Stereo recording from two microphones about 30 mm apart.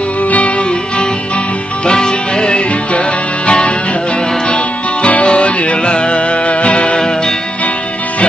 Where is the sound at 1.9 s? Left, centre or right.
Left.